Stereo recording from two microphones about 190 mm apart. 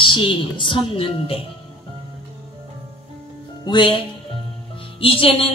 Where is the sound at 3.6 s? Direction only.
25° left (ahead or behind).